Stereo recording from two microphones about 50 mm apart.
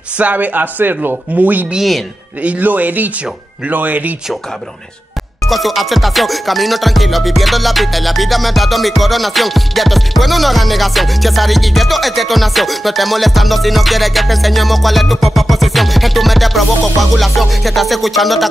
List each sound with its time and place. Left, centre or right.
0.2 s speech: right
1.8 s music: centre
2.4 s speech: right
5.5 s music: centre